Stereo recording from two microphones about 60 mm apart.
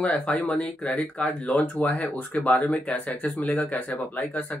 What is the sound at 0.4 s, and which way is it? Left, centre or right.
Speech, left.